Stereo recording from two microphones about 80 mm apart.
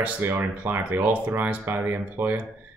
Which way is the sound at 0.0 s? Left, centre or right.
Right.